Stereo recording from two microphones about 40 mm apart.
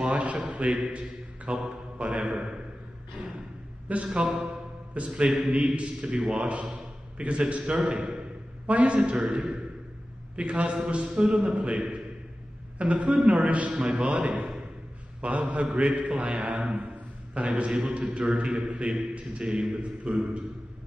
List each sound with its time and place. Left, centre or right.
0.0 s a sound: right
0.5 s a man's voice: right
6.0 s a man's voice: centre
6.4 s a man's voice: right
7.9 s speech: right
8.6 s a man's voice: right